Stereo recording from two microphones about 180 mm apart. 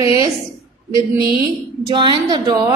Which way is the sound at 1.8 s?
25° right (ahead or behind).